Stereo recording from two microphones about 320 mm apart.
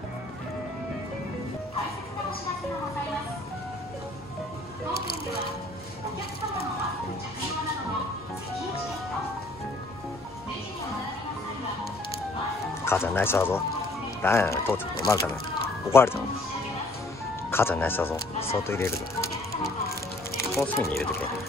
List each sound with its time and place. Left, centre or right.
12.8 s speech: centre
17.5 s speech: centre
18.4 s speech: centre
19.5 s music: left
20.3 s speech: centre